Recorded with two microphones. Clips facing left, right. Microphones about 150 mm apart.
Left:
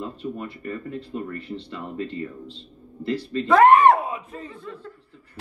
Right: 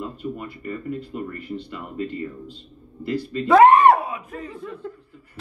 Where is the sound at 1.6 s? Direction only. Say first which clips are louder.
Left 1 dB; 30° left (ahead or behind).